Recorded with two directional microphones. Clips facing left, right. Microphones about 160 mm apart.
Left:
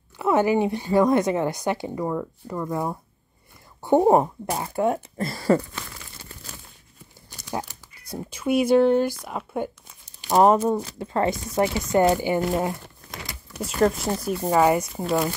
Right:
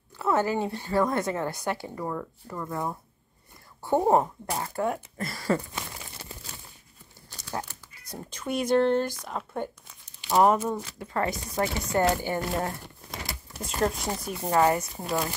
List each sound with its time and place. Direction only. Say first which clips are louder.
0.2 s a woman's voice: left 5 dB; 15° left (ahead or behind)
4.9 s speech: left 6 dB; 30° left (ahead or behind)
7.2 s speech: left 4 dB; 15° left (ahead or behind)
10.0 s speech: left 4 dB; 40° left (ahead or behind); by 12.7 s 15° left (ahead or behind)
13.6 s speech: left 6 dB; centre (ahead or behind)